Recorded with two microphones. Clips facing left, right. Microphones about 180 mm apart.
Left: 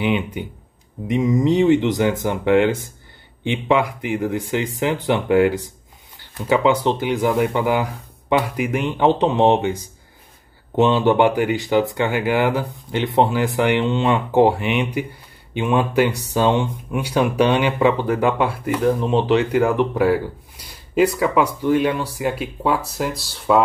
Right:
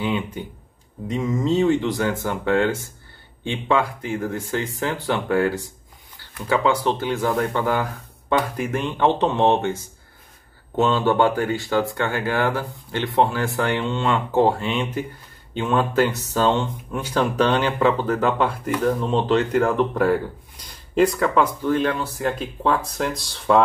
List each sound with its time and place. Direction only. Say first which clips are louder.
0.0 s speech: left 4 dB; 15° left (ahead or behind)